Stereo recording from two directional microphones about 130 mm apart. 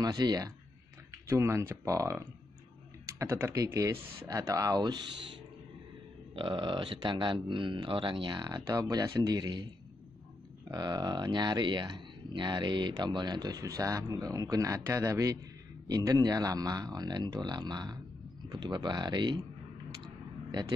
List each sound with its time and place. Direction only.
0.0 s speech: 30° right (ahead or behind)
6.3 s speech: 40° right (ahead or behind)
10.7 s speech: 30° right (ahead or behind)